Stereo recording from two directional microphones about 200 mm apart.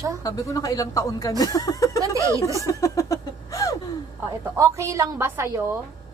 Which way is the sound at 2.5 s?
15° left (ahead or behind).